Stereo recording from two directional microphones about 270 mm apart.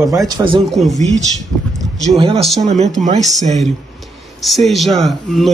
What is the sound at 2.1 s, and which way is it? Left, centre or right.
Speech, right.